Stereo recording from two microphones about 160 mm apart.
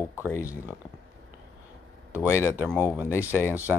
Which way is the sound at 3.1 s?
15° left (ahead or behind).